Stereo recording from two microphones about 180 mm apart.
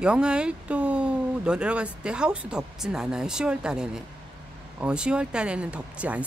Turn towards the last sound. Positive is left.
turn(degrees=-5)  # may be behind; listen again after turning